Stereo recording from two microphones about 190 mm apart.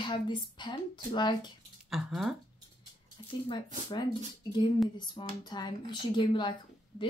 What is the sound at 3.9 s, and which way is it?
Speech, 25° left (ahead or behind).